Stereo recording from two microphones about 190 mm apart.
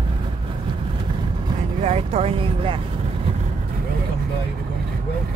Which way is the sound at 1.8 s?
35° right (ahead or behind).